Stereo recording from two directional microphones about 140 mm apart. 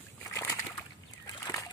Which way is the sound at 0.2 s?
20° left (ahead or behind).